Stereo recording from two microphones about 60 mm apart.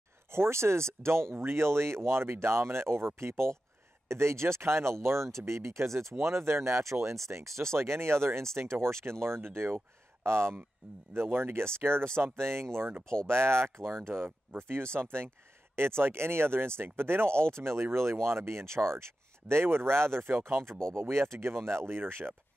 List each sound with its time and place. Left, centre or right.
0.5 s speech: right